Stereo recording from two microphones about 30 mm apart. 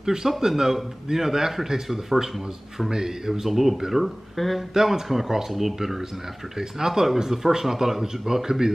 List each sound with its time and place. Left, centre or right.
0.0 s speech: centre
3.4 s speech: centre
4.7 s speech: centre